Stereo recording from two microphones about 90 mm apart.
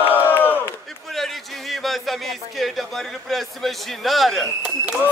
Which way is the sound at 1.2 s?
Centre (ahead or behind).